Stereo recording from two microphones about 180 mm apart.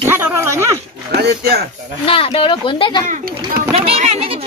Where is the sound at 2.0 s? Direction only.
30° left (ahead or behind).